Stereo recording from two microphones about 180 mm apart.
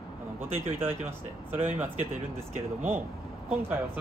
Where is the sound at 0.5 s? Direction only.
10° right (ahead or behind).